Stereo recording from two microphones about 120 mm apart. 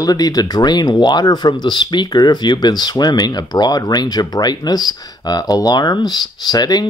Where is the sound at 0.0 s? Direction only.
30° left (ahead or behind).